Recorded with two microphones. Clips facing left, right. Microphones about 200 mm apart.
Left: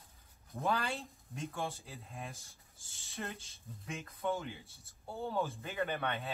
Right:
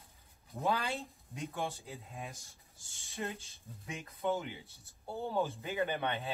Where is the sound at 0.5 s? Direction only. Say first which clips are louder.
Right 1 dB; 15° right (ahead or behind).